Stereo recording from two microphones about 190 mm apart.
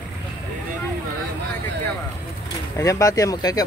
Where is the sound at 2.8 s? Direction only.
15° left (ahead or behind).